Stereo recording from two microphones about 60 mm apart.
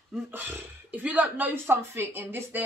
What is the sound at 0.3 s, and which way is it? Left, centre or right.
Speech, right.